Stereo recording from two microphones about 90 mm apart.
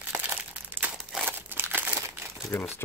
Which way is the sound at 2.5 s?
20° left (ahead or behind).